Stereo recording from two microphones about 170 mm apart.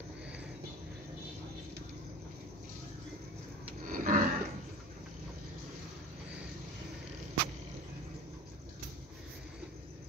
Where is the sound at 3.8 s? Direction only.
55° right (ahead or behind).